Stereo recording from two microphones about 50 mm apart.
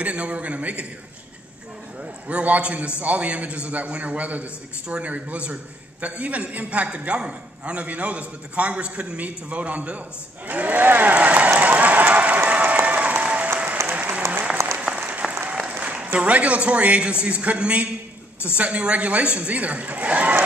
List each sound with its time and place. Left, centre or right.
0.0 s a man's voice: right
2.0 s a man's voice: right
12.4 s applause: right
13.8 s applause: right
14.8 s applause: right
15.6 s a man's voice: right